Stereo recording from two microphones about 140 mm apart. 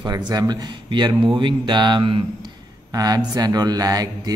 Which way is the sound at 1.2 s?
35° right (ahead or behind).